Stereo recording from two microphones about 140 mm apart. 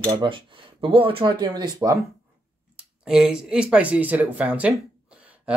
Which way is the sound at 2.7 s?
5° right (ahead or behind).